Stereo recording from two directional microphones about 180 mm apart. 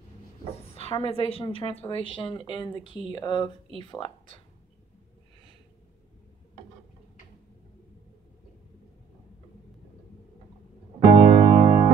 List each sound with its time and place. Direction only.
0.7 s a woman's voice: 35° left (ahead or behind)
11.0 s music: 25° right (ahead or behind)